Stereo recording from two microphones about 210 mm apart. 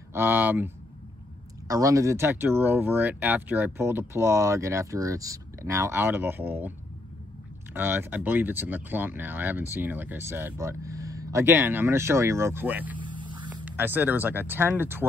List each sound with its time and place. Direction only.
0.1 s speech: 10° right (ahead or behind)
1.7 s speech: 15° right (ahead or behind)
7.7 s speech: 10° right (ahead or behind)
13.0 s hum: 20° right (ahead or behind)
13.7 s speech: 10° right (ahead or behind)